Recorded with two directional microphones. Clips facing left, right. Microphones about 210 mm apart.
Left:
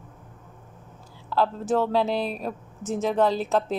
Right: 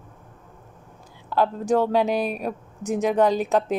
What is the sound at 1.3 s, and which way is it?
Speech, 15° right (ahead or behind).